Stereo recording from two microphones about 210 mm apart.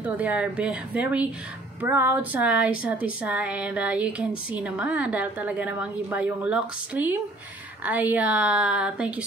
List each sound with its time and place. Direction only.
0.0 s a woman's voice: 5° right (ahead or behind)